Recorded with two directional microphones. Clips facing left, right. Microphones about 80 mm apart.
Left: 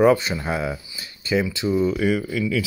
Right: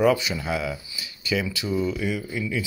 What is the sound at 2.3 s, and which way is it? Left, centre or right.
Speech, left.